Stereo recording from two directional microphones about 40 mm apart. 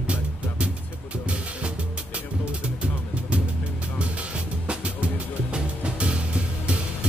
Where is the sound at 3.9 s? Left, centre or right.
Right.